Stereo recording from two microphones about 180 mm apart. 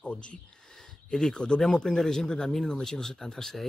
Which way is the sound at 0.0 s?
5° left (ahead or behind).